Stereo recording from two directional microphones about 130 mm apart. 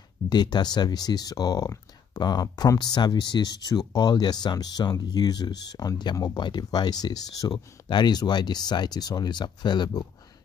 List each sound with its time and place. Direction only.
0.3 s speech: 35° left (ahead or behind)